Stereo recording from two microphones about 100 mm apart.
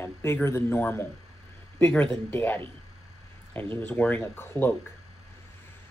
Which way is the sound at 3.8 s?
15° left (ahead or behind).